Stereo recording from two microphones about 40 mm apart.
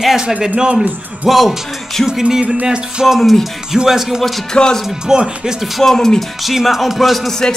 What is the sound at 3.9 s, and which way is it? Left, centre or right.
Speech, centre.